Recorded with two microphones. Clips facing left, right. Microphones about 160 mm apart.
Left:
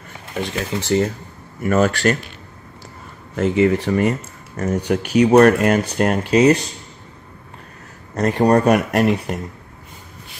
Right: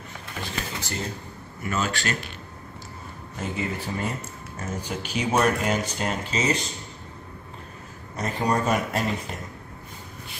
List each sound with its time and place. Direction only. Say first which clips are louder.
0.4 s speech: left 10 dB; 80° left
1.7 s speech: left 11 dB; 60° left (ahead or behind)
3.3 s speech: left 14 dB; 80° left; by 6.5 s 60° left (ahead or behind)
8.2 s speech: left 10 dB; 70° left (ahead or behind)